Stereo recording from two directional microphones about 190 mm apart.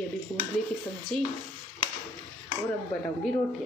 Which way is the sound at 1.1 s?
5° left (ahead or behind).